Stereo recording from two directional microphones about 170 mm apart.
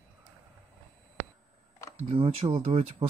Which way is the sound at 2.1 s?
35° right (ahead or behind).